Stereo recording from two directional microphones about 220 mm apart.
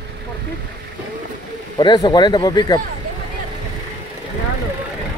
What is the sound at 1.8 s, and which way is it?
Speech, 20° left (ahead or behind).